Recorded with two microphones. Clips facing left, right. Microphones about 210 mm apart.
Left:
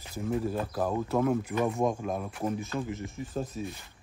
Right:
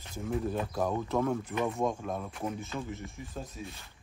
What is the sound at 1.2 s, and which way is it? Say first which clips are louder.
Speech: left 3 dB; 15° left (ahead or behind).